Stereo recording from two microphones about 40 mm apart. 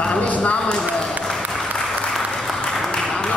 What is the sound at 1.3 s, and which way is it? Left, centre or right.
Applause, centre.